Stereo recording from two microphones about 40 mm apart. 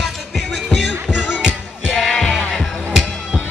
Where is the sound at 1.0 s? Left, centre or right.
Right.